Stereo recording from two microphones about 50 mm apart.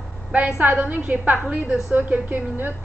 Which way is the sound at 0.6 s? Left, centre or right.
Right.